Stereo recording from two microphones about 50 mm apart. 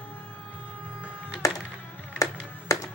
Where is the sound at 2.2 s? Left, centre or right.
Left.